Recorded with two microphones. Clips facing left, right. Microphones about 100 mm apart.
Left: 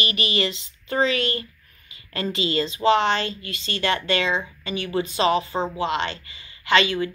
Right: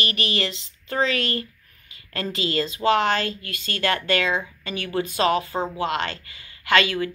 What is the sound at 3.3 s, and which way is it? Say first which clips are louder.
Speech: even; 55° right (ahead or behind).